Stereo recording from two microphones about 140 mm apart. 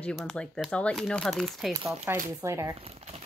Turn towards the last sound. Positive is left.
turn(degrees=-45)  # may be behind; listen again after turning